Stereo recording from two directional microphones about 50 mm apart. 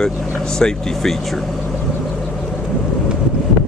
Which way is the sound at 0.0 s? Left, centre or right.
Centre.